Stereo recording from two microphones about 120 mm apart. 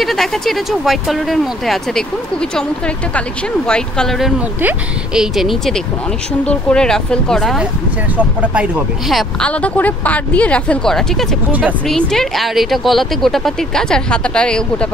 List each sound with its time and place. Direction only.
0.0 s speech: centre (ahead or behind)
3.2 s speech: 5° left (ahead or behind)
9.1 s speech: 10° left (ahead or behind)